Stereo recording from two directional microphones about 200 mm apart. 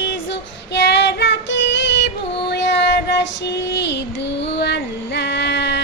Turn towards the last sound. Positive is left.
turn(degrees=60)  # may be behind; listen again after turning